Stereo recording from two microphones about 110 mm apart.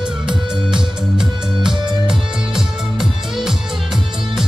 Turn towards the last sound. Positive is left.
turn(degrees=-5)  # may be behind; listen again after turning